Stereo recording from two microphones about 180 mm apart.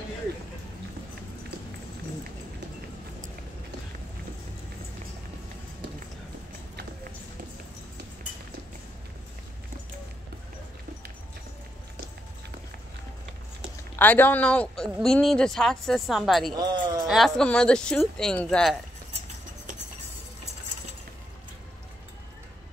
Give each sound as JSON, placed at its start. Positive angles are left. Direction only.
{"t": 13.9, "sound": "speech", "side_deg": 10}
{"t": 16.5, "sound": "a sound", "side_deg": -25}
{"t": 17.1, "sound": "speech", "side_deg": 0}